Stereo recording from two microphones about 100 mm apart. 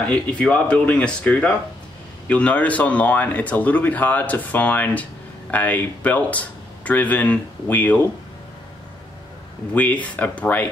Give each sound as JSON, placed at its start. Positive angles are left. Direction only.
{"t": 0.1, "sound": "speech", "side_deg": 10}
{"t": 9.8, "sound": "speech", "side_deg": 15}